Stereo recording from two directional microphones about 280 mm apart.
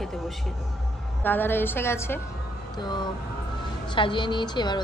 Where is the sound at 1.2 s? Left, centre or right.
Centre.